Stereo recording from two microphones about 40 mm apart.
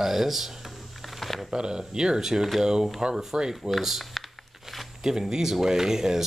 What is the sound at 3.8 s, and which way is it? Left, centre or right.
Speech, centre.